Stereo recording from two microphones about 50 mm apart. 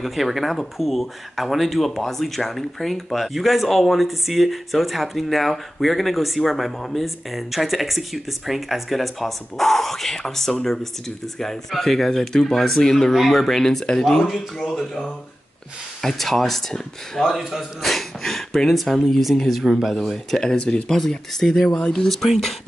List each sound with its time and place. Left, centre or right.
0.0 s speech: centre
14.2 s speech: centre
16.0 s speech: centre
17.4 s speech: centre
19.9 s speech: centre
20.5 s speech: left
20.9 s speech: centre
21.7 s speech: left
22.0 s speech: centre